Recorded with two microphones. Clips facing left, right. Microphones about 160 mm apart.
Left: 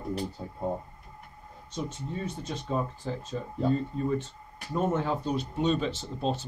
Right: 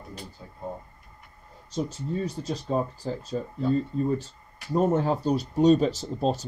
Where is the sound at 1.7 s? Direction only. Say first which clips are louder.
Right 5 dB; 35° right (ahead or behind).